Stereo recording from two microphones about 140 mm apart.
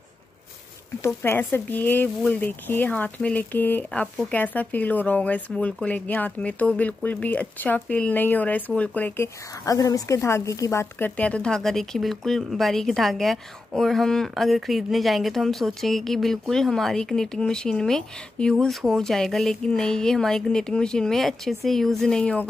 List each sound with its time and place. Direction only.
1.0 s speech: 15° left (ahead or behind)